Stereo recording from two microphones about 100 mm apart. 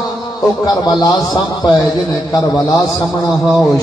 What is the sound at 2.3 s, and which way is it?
A man's voice, 40° left (ahead or behind).